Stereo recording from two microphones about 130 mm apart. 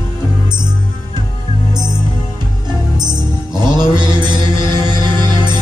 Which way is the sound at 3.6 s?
35° right (ahead or behind).